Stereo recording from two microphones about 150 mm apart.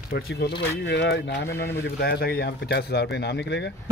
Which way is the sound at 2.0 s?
90° left.